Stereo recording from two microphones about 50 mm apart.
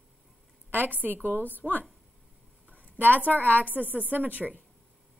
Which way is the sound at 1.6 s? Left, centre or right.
Centre.